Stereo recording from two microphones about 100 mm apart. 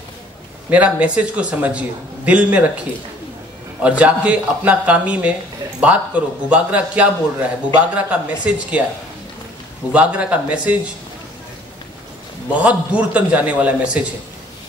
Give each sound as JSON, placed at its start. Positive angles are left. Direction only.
{"t": 0.7, "sound": "a man's voice", "side_deg": -15}
{"t": 3.8, "sound": "a man's voice", "side_deg": -10}
{"t": 9.9, "sound": "a man's voice", "side_deg": -15}
{"t": 12.5, "sound": "a man's voice", "side_deg": -15}